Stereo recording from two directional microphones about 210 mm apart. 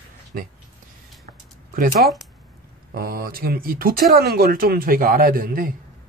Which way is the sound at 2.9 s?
45° right (ahead or behind).